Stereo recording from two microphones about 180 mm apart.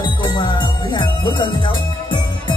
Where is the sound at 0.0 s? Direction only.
25° left (ahead or behind).